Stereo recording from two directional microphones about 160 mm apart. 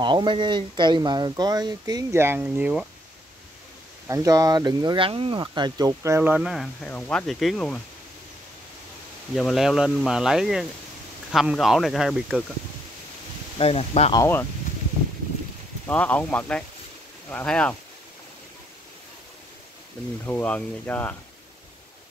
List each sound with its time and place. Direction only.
0.0 s speech: 30° right (ahead or behind); by 2.9 s 5° right (ahead or behind)
4.1 s speech: 20° right (ahead or behind); by 7.8 s 5° left (ahead or behind)
9.3 s speech: centre (ahead or behind)
13.6 s speech: 40° left (ahead or behind)
14.1 s speech: 20° left (ahead or behind)
15.9 s speech: 10° left (ahead or behind)
20.2 s speech: 10° left (ahead or behind)